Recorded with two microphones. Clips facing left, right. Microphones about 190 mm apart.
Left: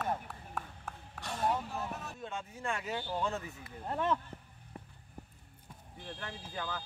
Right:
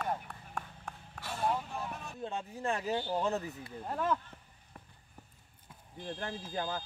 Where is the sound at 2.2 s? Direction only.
35° right (ahead or behind).